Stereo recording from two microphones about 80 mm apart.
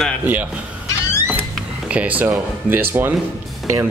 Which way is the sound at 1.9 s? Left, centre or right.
Centre.